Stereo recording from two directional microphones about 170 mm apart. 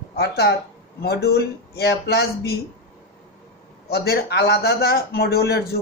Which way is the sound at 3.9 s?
70° left (ahead or behind).